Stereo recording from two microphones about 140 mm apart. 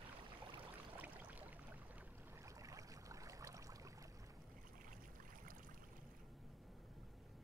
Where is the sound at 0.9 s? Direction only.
10° right (ahead or behind).